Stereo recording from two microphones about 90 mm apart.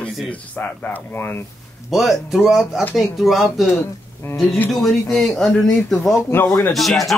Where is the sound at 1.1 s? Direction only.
25° left (ahead or behind).